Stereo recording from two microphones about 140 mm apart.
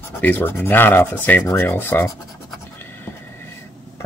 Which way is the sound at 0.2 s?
15° left (ahead or behind).